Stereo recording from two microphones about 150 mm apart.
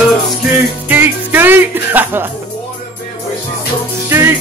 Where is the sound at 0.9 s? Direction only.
15° right (ahead or behind).